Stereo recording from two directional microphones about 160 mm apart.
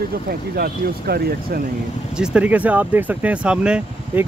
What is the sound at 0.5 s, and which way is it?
Speech, 70° right (ahead or behind).